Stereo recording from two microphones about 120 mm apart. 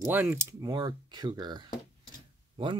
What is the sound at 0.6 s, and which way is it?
Speech, 35° right (ahead or behind).